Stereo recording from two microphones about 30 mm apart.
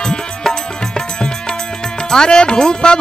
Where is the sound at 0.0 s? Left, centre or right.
Left.